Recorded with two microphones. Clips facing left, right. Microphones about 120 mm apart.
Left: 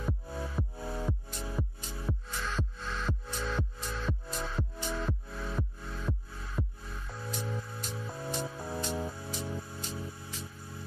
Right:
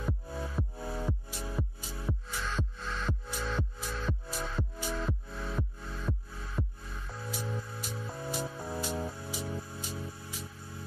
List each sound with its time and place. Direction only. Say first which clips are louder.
0.0 s music: even; centre (ahead or behind)